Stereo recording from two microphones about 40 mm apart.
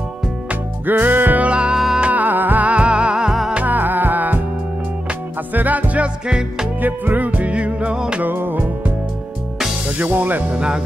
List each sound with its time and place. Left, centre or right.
0.8 s music: right
1.4 s music: right
2.1 s music: right
3.3 s music: centre
3.6 s music: right
5.5 s music: right
8.4 s music: right
9.9 s speech: right